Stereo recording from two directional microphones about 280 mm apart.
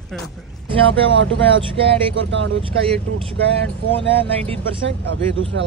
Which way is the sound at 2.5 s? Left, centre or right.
Centre.